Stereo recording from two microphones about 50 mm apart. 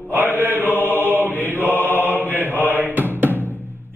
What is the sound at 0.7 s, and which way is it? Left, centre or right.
Chant, left.